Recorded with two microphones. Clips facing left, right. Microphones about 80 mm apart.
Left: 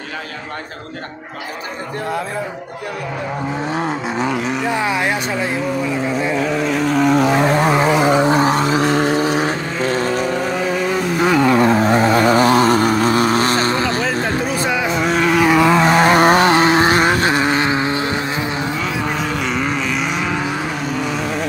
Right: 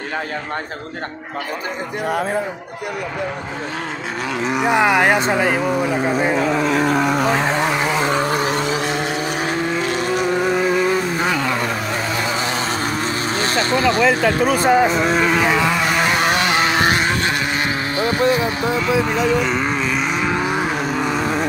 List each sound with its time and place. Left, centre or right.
4.5 s speech: centre
4.8 s speech: right
7.0 s a sound: centre
7.6 s vehicle: left
8.3 s vehicle: left
11.1 s vehicle: centre
11.5 s vehicle: left
12.1 s vehicle: left
14.0 s speech: right
14.9 s vehicle: centre
15.5 s vehicle: centre
16.0 s vehicle: left
19.0 s vehicle: centre